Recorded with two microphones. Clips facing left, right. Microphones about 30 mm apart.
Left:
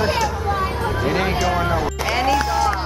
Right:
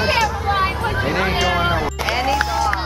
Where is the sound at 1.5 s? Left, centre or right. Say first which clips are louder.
Right 1 dB; right.